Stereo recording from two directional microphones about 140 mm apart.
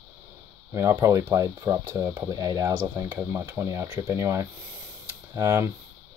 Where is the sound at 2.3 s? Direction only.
25° right (ahead or behind).